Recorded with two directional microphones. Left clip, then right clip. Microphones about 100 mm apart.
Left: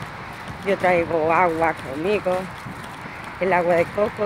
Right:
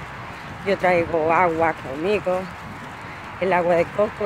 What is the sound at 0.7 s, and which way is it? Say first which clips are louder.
Speech: even; 45° right (ahead or behind).